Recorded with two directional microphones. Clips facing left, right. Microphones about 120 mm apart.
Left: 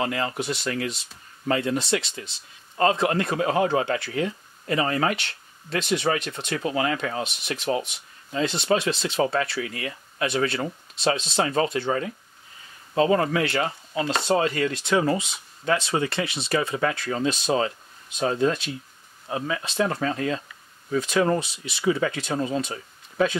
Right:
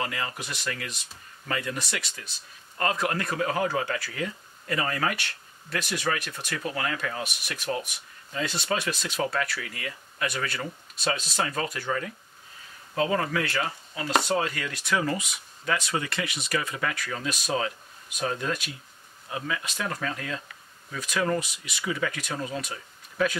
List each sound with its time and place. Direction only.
0.0 s speech: 30° left (ahead or behind)